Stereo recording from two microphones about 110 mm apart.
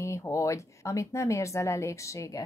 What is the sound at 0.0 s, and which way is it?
A woman's voice, 25° left (ahead or behind).